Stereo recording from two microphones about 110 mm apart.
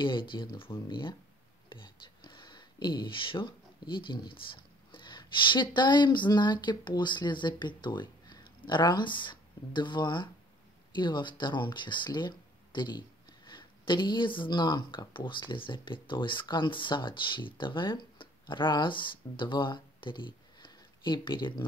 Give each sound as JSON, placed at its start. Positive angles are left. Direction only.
{"t": 0.0, "sound": "speech", "side_deg": 45}